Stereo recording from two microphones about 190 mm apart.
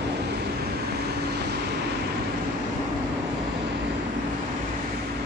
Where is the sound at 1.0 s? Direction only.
60° right (ahead or behind).